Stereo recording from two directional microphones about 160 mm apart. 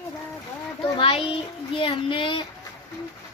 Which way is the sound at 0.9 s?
35° left (ahead or behind).